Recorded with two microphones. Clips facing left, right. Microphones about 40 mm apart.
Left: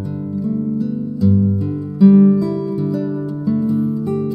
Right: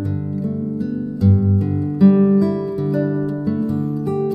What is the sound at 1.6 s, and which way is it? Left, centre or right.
Music, centre.